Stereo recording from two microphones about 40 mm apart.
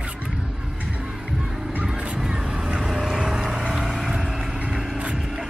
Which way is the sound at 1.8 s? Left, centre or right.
Right.